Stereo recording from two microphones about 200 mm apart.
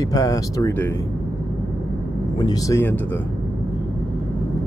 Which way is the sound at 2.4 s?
15° left (ahead or behind).